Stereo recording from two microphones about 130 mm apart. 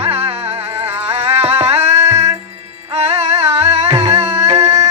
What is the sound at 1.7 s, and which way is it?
Music, 55° right (ahead or behind).